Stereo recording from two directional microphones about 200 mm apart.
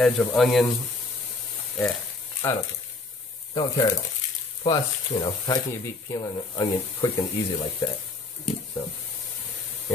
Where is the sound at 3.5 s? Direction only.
25° left (ahead or behind).